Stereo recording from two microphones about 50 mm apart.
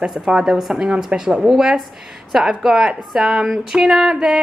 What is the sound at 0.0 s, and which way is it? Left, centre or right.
A woman's voice, centre.